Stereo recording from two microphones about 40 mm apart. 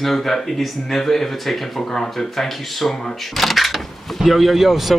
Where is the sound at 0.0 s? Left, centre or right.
Centre.